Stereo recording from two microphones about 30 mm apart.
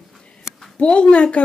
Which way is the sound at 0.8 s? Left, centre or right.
Left.